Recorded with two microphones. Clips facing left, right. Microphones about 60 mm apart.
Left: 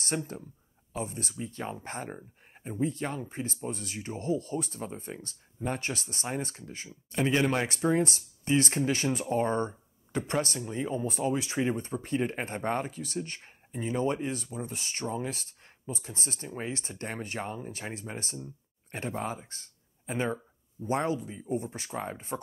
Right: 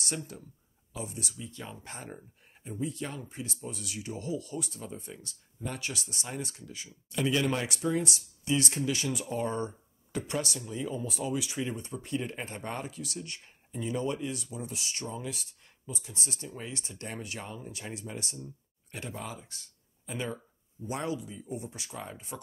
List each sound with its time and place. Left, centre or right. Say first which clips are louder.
0.0 s speech: left 4 dB; left